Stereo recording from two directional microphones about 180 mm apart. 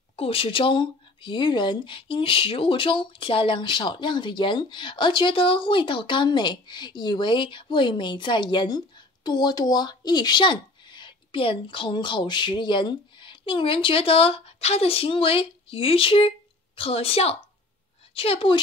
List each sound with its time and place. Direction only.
0.1 s a woman's voice: 30° left (ahead or behind)